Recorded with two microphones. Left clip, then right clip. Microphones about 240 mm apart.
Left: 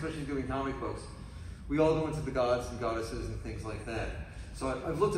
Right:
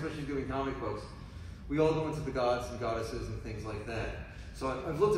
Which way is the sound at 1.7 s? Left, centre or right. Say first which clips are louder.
Left 1 dB; centre.